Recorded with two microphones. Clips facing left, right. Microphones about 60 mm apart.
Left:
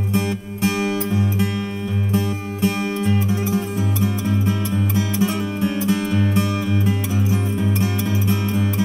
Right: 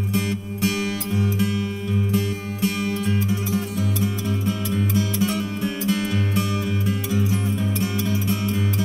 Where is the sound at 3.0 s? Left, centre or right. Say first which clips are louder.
Left 3 dB; left.